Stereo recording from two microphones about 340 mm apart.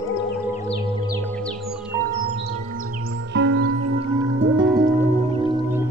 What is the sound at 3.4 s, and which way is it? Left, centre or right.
Music, right.